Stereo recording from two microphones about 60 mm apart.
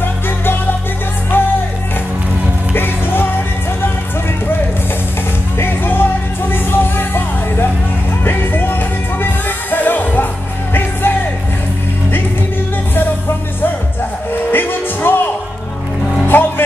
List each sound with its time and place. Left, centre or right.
0.0 s music: left
2.7 s music: left
5.6 s music: left
14.5 s music: left
16.3 s music: left